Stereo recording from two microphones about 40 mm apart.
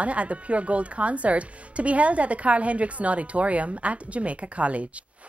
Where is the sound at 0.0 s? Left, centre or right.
Right.